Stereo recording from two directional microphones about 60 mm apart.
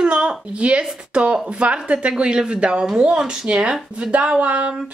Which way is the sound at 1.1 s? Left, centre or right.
Centre.